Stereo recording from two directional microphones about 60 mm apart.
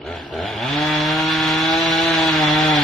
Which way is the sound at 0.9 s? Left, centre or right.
Centre.